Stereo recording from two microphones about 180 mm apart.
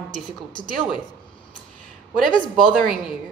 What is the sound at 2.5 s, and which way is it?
Speech, centre (ahead or behind).